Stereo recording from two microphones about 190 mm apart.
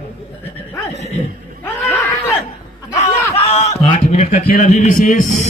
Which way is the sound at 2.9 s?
35° left (ahead or behind).